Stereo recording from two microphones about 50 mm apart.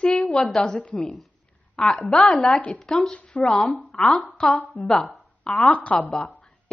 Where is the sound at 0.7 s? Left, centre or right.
Left.